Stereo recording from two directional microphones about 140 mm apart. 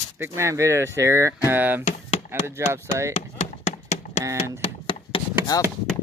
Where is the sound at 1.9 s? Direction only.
50° left (ahead or behind).